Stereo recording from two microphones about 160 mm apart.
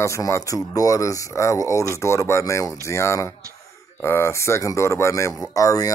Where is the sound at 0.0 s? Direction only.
20° left (ahead or behind).